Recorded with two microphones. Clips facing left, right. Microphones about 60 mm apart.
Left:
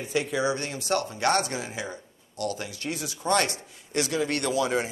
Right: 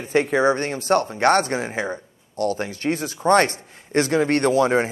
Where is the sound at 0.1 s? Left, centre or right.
Right.